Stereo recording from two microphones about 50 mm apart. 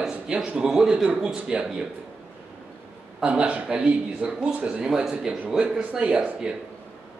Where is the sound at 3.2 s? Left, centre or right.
Right.